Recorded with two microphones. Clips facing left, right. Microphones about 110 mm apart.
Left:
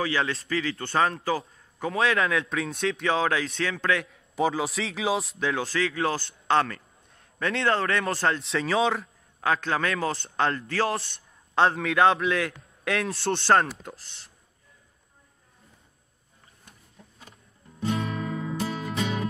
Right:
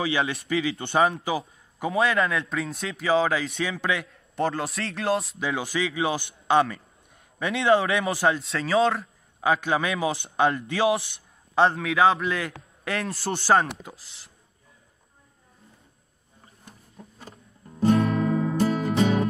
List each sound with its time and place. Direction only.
0.5 s a man's voice: 15° right (ahead or behind)
17.2 s music: 35° right (ahead or behind)